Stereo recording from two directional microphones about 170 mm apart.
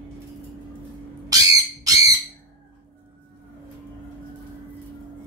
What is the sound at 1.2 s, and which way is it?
Bird, 20° right (ahead or behind).